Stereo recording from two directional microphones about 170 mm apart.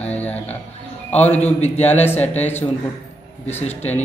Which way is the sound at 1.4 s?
40° left (ahead or behind).